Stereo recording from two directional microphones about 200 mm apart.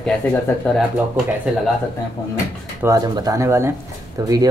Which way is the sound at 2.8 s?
15° right (ahead or behind).